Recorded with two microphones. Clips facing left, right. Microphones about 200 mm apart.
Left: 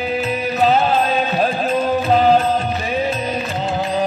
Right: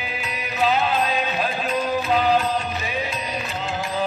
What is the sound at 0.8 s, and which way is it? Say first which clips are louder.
Music: left 5 dB; 50° left (ahead or behind).